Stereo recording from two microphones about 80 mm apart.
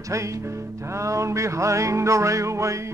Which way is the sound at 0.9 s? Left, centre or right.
Right.